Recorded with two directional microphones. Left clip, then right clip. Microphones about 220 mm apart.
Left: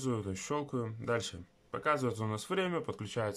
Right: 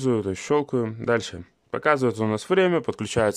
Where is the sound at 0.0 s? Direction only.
40° right (ahead or behind).